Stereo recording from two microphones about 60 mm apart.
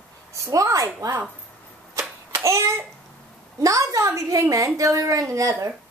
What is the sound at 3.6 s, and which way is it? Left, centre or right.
A woman's voice, right.